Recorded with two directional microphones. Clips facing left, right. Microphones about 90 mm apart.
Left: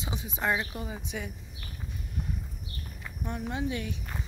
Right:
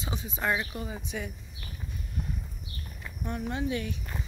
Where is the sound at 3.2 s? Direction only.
15° left (ahead or behind).